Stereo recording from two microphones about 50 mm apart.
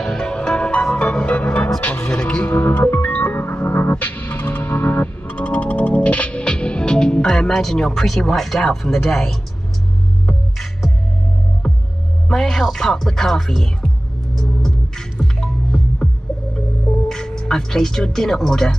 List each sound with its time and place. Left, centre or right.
0.0 s music: centre
2.4 s music: left; by 8.7 s centre
8.9 s speech: centre
10.2 s music: centre
12.3 s speech: centre
14.3 s music: centre
17.1 s speech: centre